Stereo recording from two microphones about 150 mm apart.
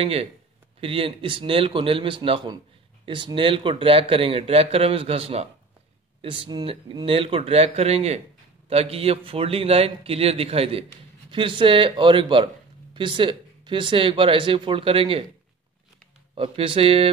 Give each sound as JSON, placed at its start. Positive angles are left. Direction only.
{"t": 0.0, "sound": "a man's voice", "side_deg": -40}
{"t": 16.3, "sound": "a man's voice", "side_deg": -35}